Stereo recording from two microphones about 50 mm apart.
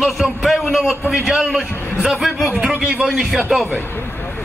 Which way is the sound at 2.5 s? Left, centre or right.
Right.